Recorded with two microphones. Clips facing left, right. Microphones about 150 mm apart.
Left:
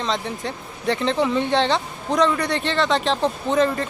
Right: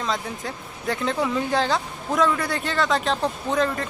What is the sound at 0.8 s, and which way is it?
A man's voice, centre (ahead or behind).